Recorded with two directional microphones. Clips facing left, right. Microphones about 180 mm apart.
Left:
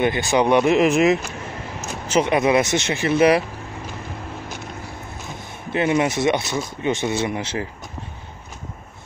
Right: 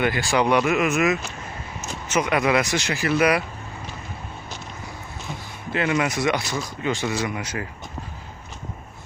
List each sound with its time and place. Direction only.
0.0 s speech: 20° left (ahead or behind)
5.7 s speech: 25° left (ahead or behind)